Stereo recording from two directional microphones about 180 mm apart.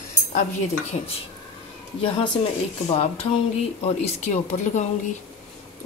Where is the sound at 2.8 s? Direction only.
35° left (ahead or behind).